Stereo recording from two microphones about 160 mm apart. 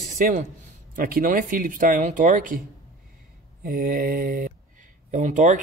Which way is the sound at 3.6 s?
65° right (ahead or behind).